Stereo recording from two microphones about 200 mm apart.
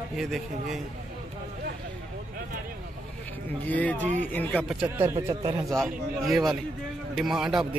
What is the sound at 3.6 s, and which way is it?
Speech, 10° left (ahead or behind).